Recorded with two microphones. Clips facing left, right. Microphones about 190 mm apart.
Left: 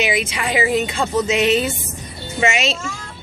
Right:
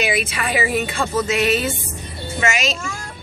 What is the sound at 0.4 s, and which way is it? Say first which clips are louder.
Speech: left 4 dB; 15° left (ahead or behind).